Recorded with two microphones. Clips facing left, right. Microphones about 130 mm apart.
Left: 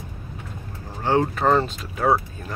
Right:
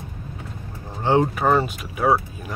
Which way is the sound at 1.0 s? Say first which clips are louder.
Right 1 dB; 15° right (ahead or behind).